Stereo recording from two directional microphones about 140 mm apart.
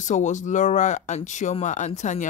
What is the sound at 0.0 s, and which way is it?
Speech, 60° left (ahead or behind).